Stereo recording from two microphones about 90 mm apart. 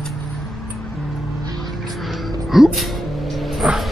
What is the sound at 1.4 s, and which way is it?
Vehicle, 50° right (ahead or behind).